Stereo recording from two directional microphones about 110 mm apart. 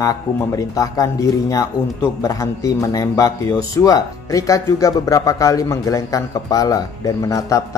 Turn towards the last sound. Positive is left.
turn(degrees=30)  # may be behind; listen again after turning